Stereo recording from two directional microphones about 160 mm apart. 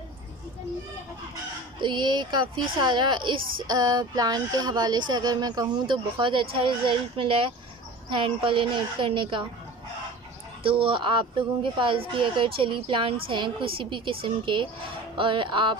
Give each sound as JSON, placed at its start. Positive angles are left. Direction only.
{"t": 1.8, "sound": "speech", "side_deg": -30}
{"t": 10.6, "sound": "speech", "side_deg": -35}